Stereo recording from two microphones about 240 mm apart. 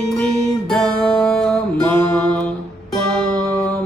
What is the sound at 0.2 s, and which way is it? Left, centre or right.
Music, centre.